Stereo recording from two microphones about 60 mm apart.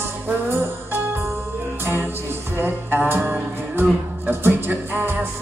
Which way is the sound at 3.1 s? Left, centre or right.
Right.